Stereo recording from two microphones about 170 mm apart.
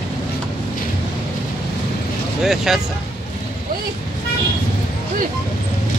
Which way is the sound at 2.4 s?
Centre (ahead or behind).